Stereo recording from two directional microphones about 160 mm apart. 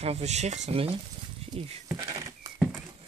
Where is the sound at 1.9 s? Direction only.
20° right (ahead or behind).